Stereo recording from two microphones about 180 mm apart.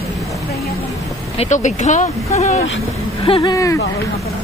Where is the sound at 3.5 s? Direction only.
20° left (ahead or behind).